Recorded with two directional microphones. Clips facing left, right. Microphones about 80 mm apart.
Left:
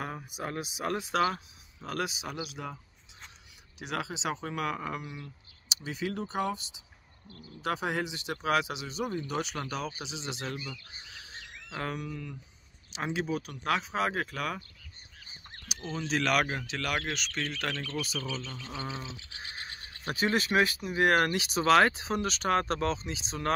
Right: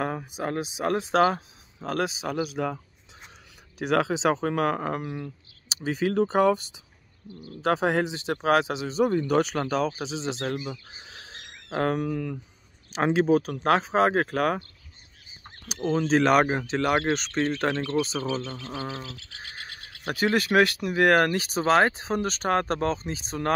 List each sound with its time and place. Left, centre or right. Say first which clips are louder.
0.0 s speech: right 8 dB; right
2.2 s speech: right 10 dB; right
3.8 s speech: right 11 dB; right
7.6 s speech: right 8 dB; right
9.1 s speech: right 11 dB; right
9.4 s speech: right 10 dB; right
11.1 s frog: right 2 dB; right
11.8 s speech: right 11 dB; right
15.7 s a man's voice: right 10 dB; right
18.6 s speech: right 5 dB; right
20.1 s speech: right 5 dB; right